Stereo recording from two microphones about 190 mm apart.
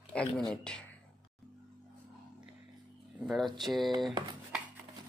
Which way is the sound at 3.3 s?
Centre (ahead or behind).